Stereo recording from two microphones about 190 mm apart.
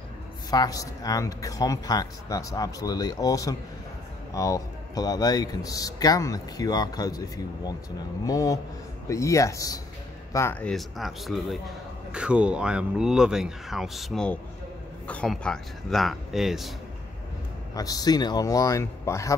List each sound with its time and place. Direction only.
0.5 s speech: 20° left (ahead or behind); by 16.7 s centre (ahead or behind)
17.7 s speech: 20° left (ahead or behind)